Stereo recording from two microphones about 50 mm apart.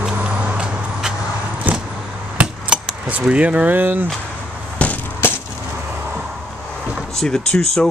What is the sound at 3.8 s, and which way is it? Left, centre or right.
Speech, right.